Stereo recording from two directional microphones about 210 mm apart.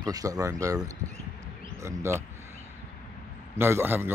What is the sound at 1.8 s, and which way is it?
Speech, 15° right (ahead or behind).